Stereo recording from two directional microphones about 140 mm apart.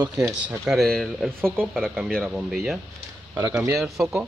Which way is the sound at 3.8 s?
Centre (ahead or behind).